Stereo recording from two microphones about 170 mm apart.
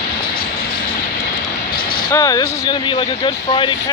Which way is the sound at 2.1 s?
20° left (ahead or behind).